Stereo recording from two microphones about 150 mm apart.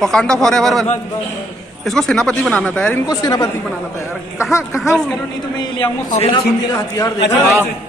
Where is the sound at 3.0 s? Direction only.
25° left (ahead or behind).